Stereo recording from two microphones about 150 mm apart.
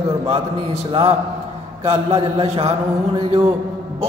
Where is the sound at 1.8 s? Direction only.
45° right (ahead or behind).